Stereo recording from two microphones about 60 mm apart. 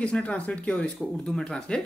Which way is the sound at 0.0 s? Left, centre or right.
Left.